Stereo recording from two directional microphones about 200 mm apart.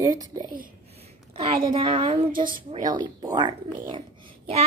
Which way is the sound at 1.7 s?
25° right (ahead or behind).